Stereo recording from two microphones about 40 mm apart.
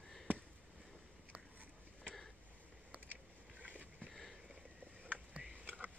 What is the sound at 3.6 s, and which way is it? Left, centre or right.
Boat, right.